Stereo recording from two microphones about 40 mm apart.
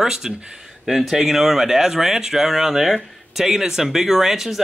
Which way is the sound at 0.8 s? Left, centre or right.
Centre.